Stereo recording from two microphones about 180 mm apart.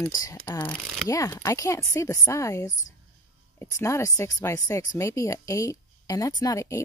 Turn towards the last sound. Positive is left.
turn(degrees=15)  # may be behind; listen again after turning